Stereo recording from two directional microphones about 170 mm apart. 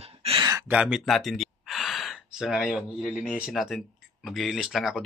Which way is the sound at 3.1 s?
Centre (ahead or behind).